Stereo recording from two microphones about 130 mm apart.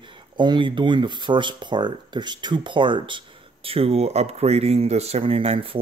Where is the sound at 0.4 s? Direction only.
35° right (ahead or behind).